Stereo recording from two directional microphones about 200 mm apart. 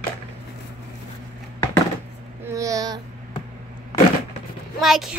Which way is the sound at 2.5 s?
15° right (ahead or behind).